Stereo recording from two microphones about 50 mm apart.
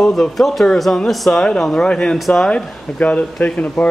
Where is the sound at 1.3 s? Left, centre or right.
Centre.